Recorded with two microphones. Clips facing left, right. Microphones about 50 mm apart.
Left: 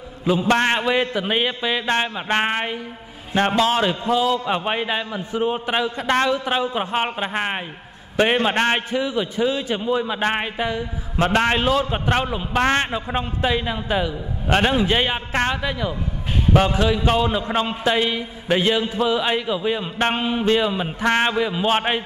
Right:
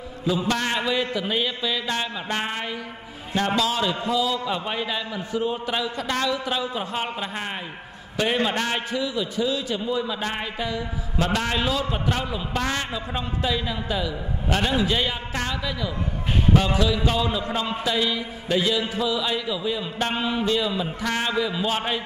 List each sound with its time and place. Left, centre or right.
0.5 s a man's voice: left